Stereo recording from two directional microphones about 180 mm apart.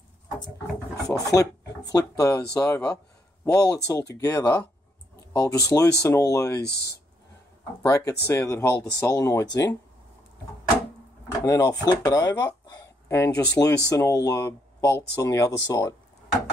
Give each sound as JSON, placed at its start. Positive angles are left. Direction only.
{"t": 1.0, "sound": "speech", "side_deg": 20}
{"t": 6.6, "sound": "speech", "side_deg": 65}
{"t": 7.8, "sound": "speech", "side_deg": 15}
{"t": 11.4, "sound": "speech", "side_deg": 20}